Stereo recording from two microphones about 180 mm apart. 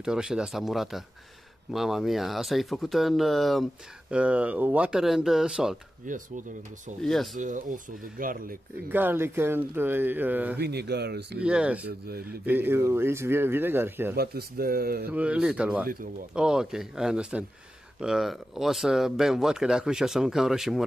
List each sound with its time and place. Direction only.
0.0 s speech: 5° right (ahead or behind)
6.0 s speech: 45° right (ahead or behind)
7.0 s speech: centre (ahead or behind)
7.3 s speech: 45° right (ahead or behind)
8.8 s speech: 10° right (ahead or behind)
10.6 s speech: 65° right (ahead or behind)
11.3 s speech: 5° right (ahead or behind)
14.1 s speech: 60° right (ahead or behind)
15.0 s speech: 5° right (ahead or behind)
15.9 s speech: 50° right (ahead or behind)
16.3 s speech: 5° right (ahead or behind)